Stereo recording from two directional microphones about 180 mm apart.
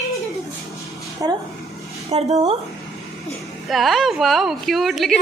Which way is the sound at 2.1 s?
35° right (ahead or behind).